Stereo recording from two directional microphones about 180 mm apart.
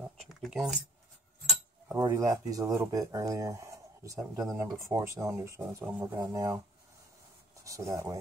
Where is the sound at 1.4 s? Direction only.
10° right (ahead or behind).